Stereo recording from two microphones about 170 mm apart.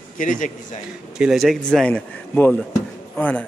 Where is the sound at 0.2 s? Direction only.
50° left (ahead or behind).